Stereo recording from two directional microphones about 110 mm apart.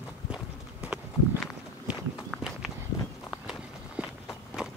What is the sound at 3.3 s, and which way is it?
Walk, 5° right (ahead or behind).